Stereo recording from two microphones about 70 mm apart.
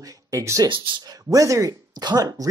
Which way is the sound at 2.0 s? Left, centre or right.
Right.